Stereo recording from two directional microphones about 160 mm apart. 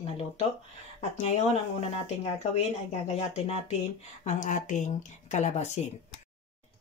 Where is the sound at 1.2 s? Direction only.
40° left (ahead or behind).